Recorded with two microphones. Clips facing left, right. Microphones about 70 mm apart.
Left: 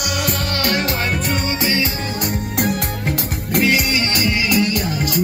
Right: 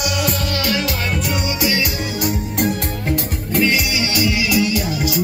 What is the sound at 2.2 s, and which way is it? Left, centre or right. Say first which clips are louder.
Music: right 1 dB; left.